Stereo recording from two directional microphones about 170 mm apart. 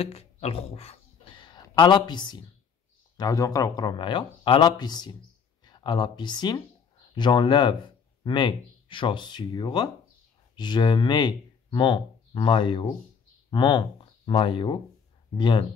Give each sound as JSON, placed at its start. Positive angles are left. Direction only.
{"t": 0.0, "sound": "speech", "side_deg": 35}